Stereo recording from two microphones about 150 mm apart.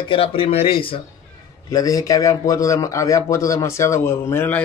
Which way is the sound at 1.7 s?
25° left (ahead or behind).